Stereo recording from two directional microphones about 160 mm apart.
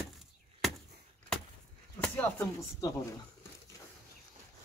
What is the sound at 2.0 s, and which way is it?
Chopping, 10° left (ahead or behind).